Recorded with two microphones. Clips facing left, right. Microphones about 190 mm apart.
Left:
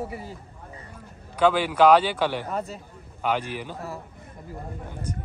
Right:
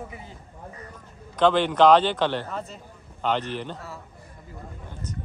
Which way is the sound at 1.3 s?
10° left (ahead or behind).